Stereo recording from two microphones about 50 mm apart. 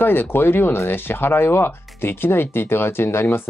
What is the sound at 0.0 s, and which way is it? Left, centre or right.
Speech, left.